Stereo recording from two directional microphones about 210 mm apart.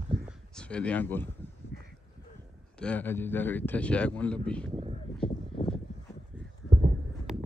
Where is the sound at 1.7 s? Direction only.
45° right (ahead or behind).